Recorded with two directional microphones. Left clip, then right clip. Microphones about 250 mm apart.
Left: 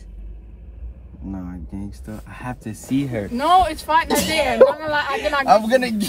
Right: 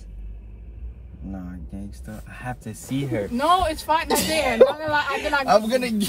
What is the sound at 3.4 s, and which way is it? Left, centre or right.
A man's voice, centre.